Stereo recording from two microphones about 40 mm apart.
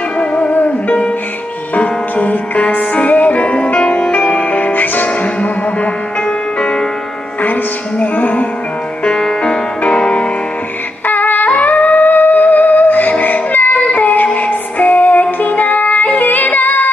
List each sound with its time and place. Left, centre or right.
0.2 s music: left
3.7 s music: left
4.3 s music: left
6.2 s music: left
8.0 s music: left
9.0 s music: left
11.1 s a sound: left
11.8 s music: left